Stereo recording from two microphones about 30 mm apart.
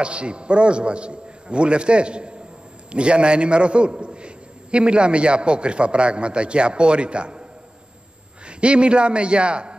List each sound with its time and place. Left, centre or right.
0.0 s a man's voice: right
8.5 s a man's voice: right